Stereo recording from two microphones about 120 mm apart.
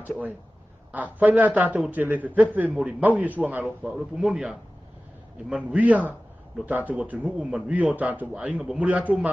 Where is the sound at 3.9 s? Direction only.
5° right (ahead or behind).